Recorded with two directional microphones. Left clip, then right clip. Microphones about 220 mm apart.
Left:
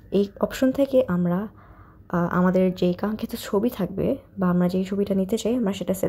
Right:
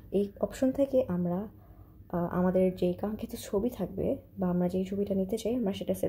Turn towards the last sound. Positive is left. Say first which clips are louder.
# left 6 dB
turn(degrees=20)  # may be behind; listen again after turning